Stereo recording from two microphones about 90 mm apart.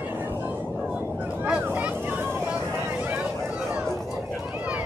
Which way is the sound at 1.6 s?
20° right (ahead or behind).